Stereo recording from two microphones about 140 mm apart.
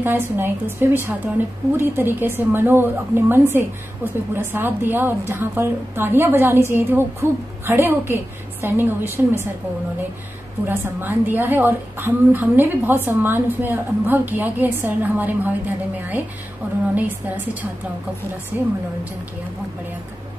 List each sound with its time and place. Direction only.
0.0 s a woman's voice: 15° right (ahead or behind)
10.7 s a woman's voice: 15° right (ahead or behind)
18.5 s a woman's voice: 15° right (ahead or behind)